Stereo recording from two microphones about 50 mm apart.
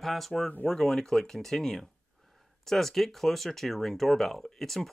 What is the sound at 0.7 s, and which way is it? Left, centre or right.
Speech, centre.